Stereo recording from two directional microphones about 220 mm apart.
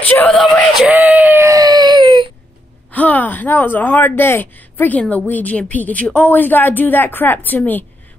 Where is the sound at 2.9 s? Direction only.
5° left (ahead or behind).